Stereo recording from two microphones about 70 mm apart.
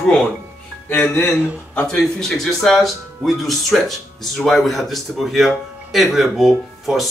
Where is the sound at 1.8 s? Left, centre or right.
Centre.